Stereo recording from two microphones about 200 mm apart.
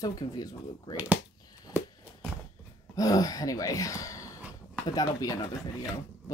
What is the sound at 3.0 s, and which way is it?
Speech, 15° left (ahead or behind).